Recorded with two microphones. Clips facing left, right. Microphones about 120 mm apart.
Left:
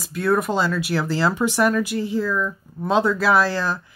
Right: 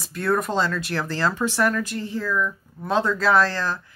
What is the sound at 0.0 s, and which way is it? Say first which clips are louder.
Speech: left 3 dB; centre (ahead or behind).